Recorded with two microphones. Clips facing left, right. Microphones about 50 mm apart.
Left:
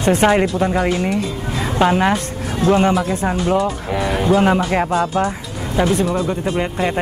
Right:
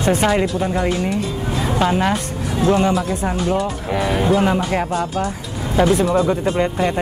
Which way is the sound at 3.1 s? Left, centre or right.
Left.